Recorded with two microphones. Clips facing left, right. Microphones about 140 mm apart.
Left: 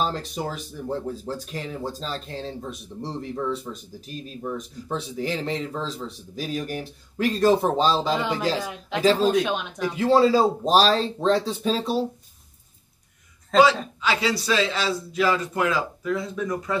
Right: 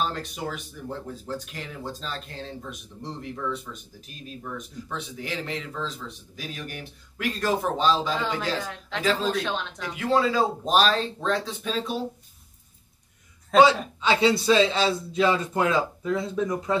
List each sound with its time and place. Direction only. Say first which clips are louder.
0.0 s a man's voice: left 3 dB; 35° left (ahead or behind)
9.3 s speech: left 5 dB; 15° left (ahead or behind)
9.9 s speech: left 5 dB; 30° left (ahead or behind)
13.5 s a woman's voice: even; centre (ahead or behind)
14.0 s speech: right 4 dB; 25° right (ahead or behind)